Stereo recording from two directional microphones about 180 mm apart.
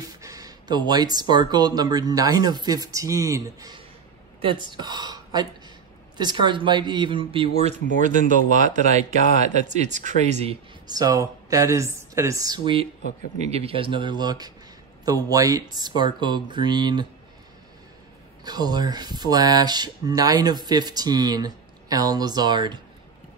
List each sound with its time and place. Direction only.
0.0 s speech: 20° right (ahead or behind)
7.5 s speech: 40° right (ahead or behind)
10.9 s speech: 20° right (ahead or behind)
18.4 s speech: 20° right (ahead or behind)